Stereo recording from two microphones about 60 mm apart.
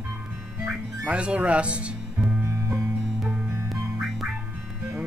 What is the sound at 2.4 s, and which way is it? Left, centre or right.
Music, right.